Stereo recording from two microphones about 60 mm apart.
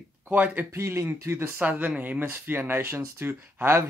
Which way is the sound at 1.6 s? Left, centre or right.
Right.